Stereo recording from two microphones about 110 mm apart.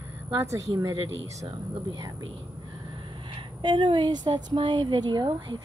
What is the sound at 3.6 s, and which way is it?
A woman's voice, 45° right (ahead or behind).